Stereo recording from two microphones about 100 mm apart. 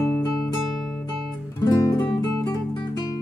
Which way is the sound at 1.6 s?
45° left (ahead or behind).